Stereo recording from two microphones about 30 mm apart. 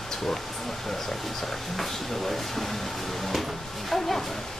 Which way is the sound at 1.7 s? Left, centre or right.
Centre.